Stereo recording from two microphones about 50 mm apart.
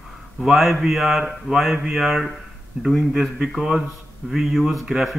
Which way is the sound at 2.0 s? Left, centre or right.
Centre.